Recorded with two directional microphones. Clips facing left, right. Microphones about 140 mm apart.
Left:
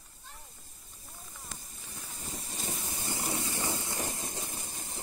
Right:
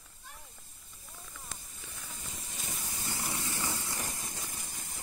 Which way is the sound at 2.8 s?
25° left (ahead or behind).